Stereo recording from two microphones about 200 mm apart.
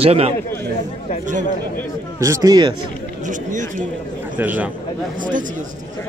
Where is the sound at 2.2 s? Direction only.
15° right (ahead or behind).